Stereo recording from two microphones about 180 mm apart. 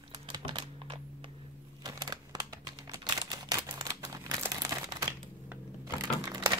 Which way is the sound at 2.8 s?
20° right (ahead or behind).